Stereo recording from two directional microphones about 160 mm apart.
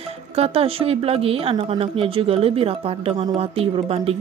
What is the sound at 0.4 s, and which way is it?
Speech, 35° right (ahead or behind).